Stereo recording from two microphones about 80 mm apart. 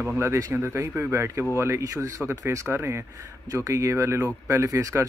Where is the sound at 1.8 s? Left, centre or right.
Right.